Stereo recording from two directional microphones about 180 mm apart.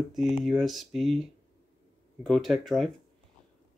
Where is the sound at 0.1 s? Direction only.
Centre (ahead or behind).